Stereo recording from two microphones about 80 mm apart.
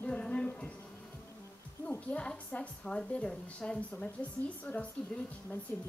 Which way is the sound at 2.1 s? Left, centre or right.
Centre.